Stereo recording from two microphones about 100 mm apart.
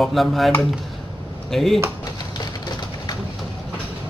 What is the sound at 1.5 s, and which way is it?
Speech, centre (ahead or behind).